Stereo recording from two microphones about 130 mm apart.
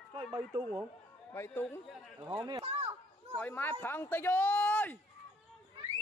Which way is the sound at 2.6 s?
50° right (ahead or behind).